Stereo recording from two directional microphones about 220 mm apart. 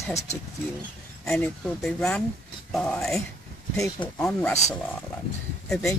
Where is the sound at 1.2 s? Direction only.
Centre (ahead or behind).